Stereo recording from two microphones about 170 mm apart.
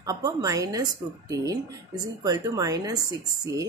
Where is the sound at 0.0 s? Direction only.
20° right (ahead or behind).